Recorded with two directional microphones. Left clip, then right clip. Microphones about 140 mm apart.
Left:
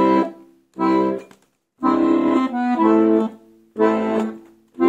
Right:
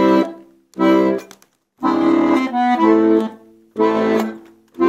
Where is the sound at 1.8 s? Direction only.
5° left (ahead or behind).